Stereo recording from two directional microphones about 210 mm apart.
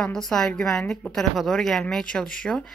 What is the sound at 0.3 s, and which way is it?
A woman's voice, 5° left (ahead or behind).